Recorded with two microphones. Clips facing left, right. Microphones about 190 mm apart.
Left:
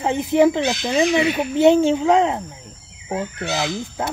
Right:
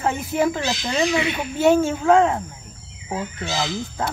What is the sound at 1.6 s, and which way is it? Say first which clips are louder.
Speech: left 3 dB; 20° left (ahead or behind).